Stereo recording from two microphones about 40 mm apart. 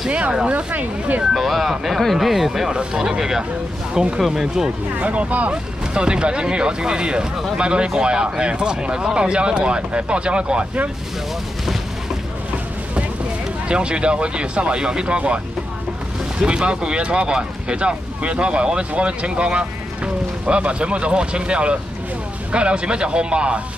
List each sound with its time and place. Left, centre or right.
0.5 s speech: right
0.7 s speech: right
1.3 s speech: centre
2.7 s speech: right
4.9 s speech: right
5.9 s speech: right
13.7 s speech: right